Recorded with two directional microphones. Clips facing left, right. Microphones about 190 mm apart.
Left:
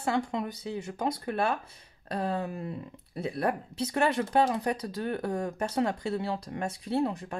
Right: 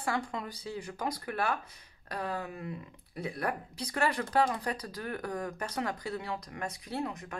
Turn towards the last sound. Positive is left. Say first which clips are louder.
# left 7 dB
turn(degrees=30)  # may be behind; listen again after turning